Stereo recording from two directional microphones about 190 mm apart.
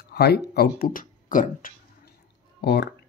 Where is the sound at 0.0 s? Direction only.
60° left (ahead or behind).